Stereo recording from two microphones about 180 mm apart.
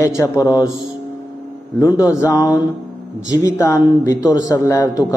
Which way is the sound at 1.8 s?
20° left (ahead or behind).